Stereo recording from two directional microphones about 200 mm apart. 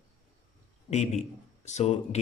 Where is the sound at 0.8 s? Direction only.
35° left (ahead or behind).